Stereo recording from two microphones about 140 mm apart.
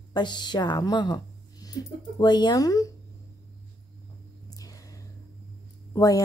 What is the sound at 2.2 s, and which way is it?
Speech, 30° left (ahead or behind).